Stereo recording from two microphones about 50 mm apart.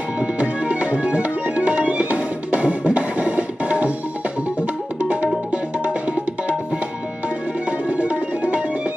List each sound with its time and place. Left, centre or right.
0.2 s music: right
5.0 s music: right
8.0 s music: right